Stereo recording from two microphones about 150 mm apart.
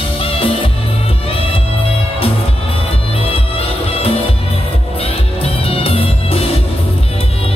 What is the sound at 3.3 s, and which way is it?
Music, 40° left (ahead or behind).